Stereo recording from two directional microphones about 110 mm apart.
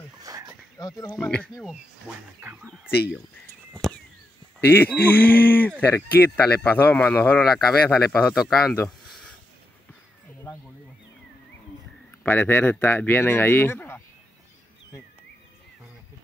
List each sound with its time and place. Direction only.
0.2 s a sound: 30° right (ahead or behind)
0.7 s speech: 35° left (ahead or behind)
1.2 s speech: 10° left (ahead or behind)
3.7 s a sound: 10° left (ahead or behind)
4.6 s speech: 20° left (ahead or behind)
10.5 s wild animals: 30° left (ahead or behind)
12.2 s speech: 15° left (ahead or behind)